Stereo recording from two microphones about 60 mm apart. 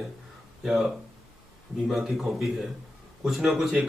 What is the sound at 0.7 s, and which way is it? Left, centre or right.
Speech, centre.